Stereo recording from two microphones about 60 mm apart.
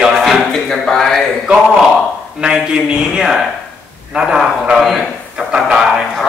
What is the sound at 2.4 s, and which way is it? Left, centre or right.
A man's voice, centre.